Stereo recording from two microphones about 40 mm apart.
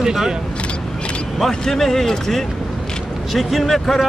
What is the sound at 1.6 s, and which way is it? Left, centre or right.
Speech, centre.